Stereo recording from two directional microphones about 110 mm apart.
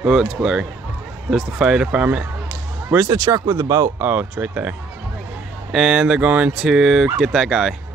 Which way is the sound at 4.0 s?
15° right (ahead or behind).